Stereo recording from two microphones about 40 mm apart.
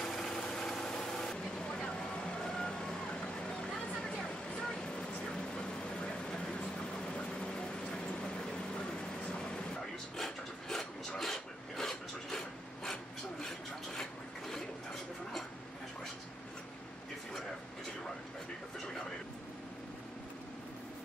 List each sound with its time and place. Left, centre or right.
0.0 s vehicle: centre
7.2 s a sound: left
10.1 s filing: centre